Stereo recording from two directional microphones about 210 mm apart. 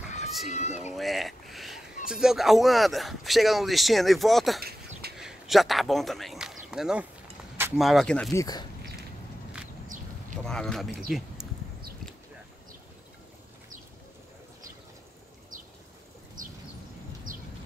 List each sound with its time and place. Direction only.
0.5 s speech: 35° left (ahead or behind)
0.9 s speech: centre (ahead or behind)
4.6 s a sound: 45° right (ahead or behind)
5.1 s speech: centre (ahead or behind)
7.5 s a sound: 10° right (ahead or behind)
7.8 s speech: centre (ahead or behind)
8.3 s speech: 15° left (ahead or behind)
10.4 s speech: 5° left (ahead or behind)
17.3 s a sound: 40° right (ahead or behind)